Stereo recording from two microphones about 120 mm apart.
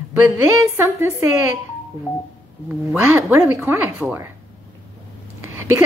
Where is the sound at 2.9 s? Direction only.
20° right (ahead or behind).